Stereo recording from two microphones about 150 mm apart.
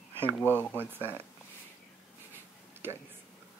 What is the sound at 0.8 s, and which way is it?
Speech, 15° right (ahead or behind).